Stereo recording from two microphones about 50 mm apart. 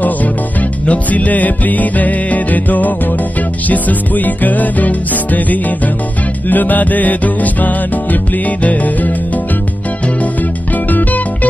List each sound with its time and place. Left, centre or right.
0.8 s music: left
10.9 s music: left